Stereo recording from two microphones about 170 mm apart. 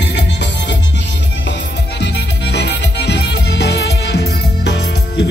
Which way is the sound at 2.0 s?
90° left.